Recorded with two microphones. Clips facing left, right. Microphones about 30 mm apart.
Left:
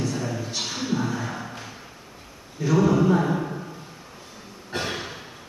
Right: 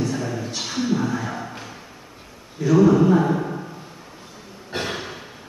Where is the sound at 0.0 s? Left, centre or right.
Centre.